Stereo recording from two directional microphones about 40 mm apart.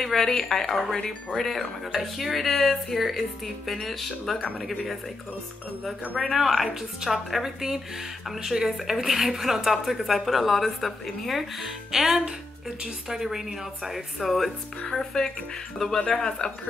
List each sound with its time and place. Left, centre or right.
0.0 s speech: centre
6.3 s a woman's voice: centre
16.0 s speech: left